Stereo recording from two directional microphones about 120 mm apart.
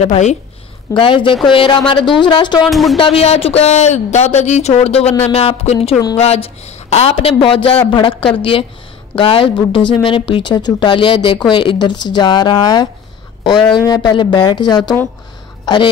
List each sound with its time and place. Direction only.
0.0 s a woman's voice: 70° left (ahead or behind)
0.9 s speech: 45° left (ahead or behind)
2.7 s speech: centre (ahead or behind)
3.0 s speech: 50° left (ahead or behind)